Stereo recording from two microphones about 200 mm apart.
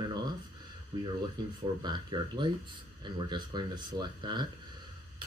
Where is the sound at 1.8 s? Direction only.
20° right (ahead or behind).